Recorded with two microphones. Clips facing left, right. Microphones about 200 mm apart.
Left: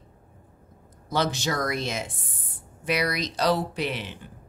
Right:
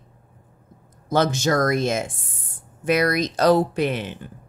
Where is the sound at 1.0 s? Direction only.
50° right (ahead or behind).